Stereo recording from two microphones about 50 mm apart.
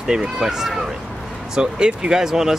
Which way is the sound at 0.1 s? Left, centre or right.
Centre.